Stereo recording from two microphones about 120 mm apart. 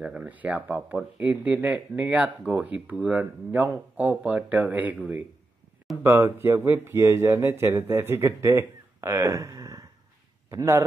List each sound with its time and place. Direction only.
0.0 s a man's voice: 10° right (ahead or behind)